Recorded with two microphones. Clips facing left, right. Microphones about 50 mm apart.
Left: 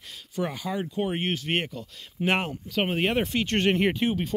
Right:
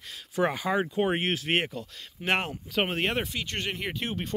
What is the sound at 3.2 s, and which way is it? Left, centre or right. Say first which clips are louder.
Speech: left 8 dB; left.